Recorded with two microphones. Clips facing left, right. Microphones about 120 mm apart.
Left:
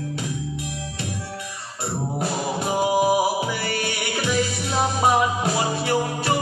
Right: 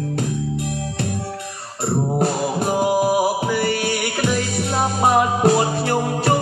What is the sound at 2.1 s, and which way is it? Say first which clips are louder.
Music: right 5 dB; 50° right (ahead or behind).